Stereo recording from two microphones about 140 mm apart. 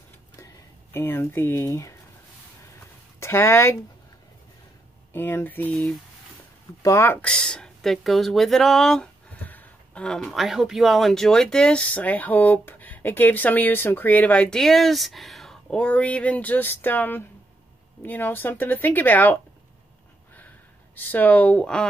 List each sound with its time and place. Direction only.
0.9 s speech: 15° left (ahead or behind)
3.2 s speech: 15° left (ahead or behind)
5.1 s speech: 15° left (ahead or behind)
6.8 s speech: 20° left (ahead or behind)
20.3 s a sound: 10° left (ahead or behind)